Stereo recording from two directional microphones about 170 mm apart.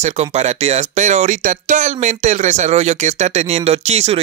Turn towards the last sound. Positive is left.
turn(degrees=-40)  # may be behind; listen again after turning